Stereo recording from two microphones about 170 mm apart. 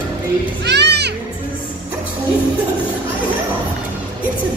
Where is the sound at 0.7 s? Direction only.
85° right.